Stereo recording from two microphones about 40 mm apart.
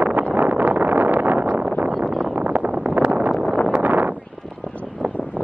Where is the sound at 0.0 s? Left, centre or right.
Right.